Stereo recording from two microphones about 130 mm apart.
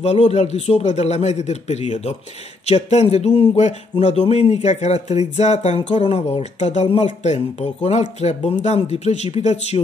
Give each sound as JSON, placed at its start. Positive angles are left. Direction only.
{"t": 0.0, "sound": "speech", "side_deg": 55}